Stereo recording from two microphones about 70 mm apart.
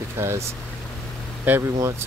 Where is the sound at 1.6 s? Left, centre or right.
Right.